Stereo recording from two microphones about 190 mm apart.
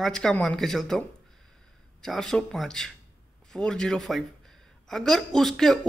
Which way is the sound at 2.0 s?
Centre (ahead or behind).